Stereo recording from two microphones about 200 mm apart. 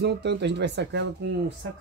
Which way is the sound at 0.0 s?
55° right (ahead or behind).